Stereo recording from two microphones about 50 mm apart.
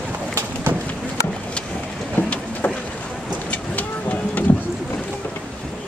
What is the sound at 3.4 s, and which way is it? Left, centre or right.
Vehicle, left.